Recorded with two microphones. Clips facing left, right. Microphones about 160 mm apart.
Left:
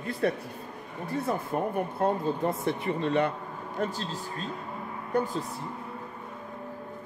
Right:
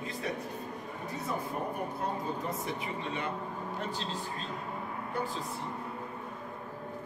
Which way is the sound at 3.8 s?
45° left (ahead or behind).